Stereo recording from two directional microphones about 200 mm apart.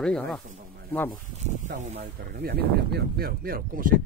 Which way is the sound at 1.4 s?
35° right (ahead or behind).